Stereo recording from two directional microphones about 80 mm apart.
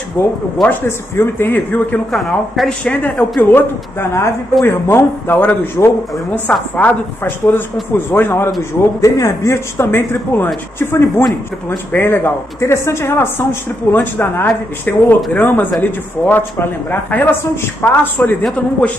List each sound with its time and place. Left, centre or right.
0.2 s speech: left
2.1 s a man's voice: centre
2.8 s speech: centre